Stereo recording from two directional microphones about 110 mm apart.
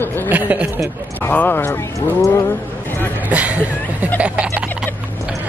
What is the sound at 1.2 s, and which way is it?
Speech, 15° left (ahead or behind).